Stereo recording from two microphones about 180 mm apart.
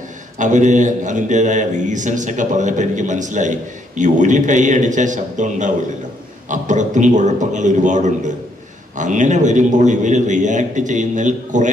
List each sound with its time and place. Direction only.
0.4 s a man's voice: 45° right (ahead or behind)